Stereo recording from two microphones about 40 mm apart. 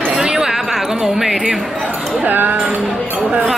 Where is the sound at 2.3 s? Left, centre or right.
Right.